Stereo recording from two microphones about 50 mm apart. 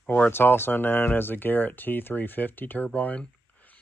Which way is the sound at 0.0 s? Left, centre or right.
Left.